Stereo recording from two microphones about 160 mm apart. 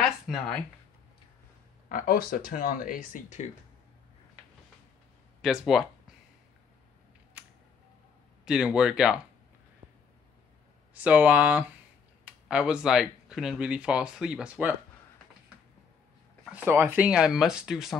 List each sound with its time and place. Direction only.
0.0 s a sound: 5° left (ahead or behind)
1.9 s speech: 60° left (ahead or behind)
5.4 s speech: 5° right (ahead or behind)
7.4 s a sound: 10° right (ahead or behind)
8.5 s speech: 5° right (ahead or behind)
11.0 s speech: 10° right (ahead or behind)
16.5 s speech: 15° right (ahead or behind)